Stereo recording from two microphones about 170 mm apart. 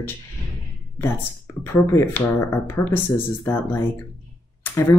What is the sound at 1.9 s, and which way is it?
Speech, 15° left (ahead or behind).